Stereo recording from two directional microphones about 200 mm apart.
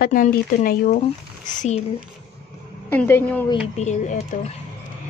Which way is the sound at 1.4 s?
35° left (ahead or behind).